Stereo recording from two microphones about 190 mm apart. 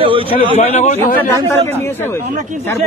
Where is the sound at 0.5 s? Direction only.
35° left (ahead or behind).